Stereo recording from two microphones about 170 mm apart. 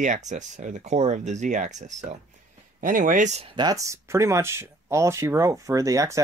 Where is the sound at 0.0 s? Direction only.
45° right (ahead or behind).